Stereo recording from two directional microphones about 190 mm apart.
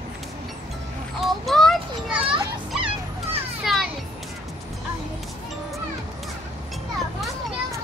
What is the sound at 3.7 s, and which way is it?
Children playing, centre (ahead or behind).